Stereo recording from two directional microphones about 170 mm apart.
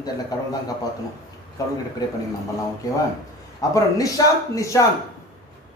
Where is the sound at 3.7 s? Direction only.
20° left (ahead or behind).